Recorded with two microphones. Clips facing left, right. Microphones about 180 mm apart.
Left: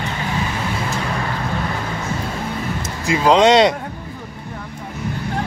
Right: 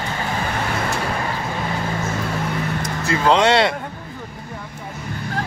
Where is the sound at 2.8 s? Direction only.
15° left (ahead or behind).